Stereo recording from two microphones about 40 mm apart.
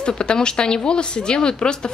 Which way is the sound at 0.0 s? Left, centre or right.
Left.